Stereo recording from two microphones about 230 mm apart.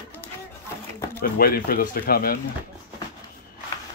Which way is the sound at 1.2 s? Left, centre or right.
Left.